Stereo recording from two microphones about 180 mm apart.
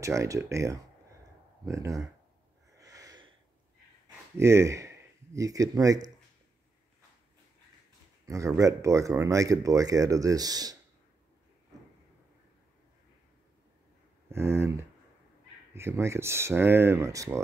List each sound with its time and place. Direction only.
0.0 s speech: 15° right (ahead or behind)
2.8 s a sound: 20° right (ahead or behind)
4.4 s speech: 15° right (ahead or behind)
8.3 s speech: 15° right (ahead or behind)
14.3 s speech: 15° right (ahead or behind)